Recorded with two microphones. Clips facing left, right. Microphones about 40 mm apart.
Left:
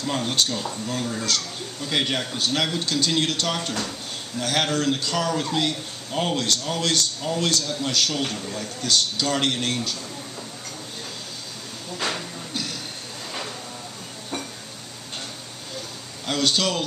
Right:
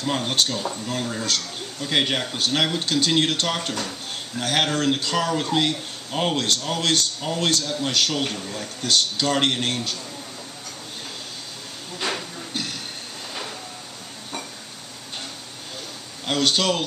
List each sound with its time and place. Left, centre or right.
0.0 s a man's voice: right
16.3 s a man's voice: centre